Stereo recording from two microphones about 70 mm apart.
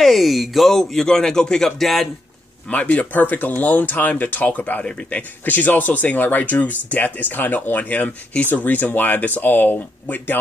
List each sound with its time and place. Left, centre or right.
0.0 s speech: centre
2.7 s speech: left